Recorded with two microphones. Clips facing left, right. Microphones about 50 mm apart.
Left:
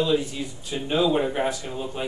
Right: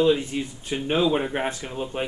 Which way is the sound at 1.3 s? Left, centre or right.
Right.